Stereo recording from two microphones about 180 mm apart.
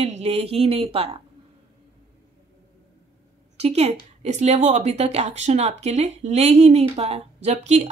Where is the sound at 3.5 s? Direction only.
35° right (ahead or behind).